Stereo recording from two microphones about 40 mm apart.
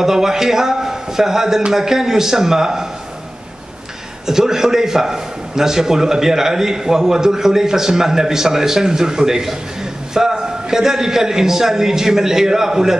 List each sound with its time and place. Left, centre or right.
0.0 s a man's voice: centre
4.3 s a man's voice: centre